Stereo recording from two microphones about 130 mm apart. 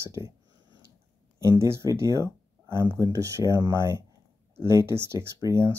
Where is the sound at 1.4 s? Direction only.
20° right (ahead or behind).